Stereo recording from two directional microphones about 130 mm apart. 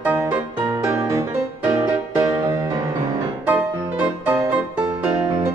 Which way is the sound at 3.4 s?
10° right (ahead or behind).